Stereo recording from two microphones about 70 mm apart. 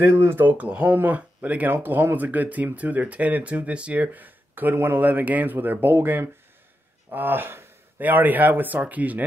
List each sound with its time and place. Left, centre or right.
0.0 s speech: right